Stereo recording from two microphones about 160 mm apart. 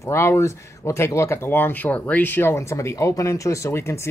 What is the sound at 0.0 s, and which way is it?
Speech, 15° left (ahead or behind).